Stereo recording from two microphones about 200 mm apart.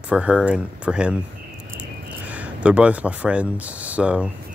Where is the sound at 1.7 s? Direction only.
5° right (ahead or behind).